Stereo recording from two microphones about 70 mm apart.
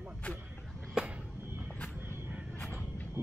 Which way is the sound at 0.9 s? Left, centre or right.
Centre.